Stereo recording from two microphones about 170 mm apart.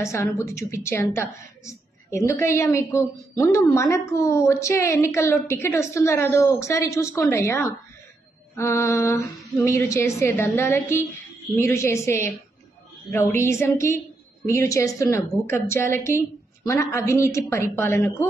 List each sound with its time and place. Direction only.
0.0 s a woman's voice: 15° left (ahead or behind)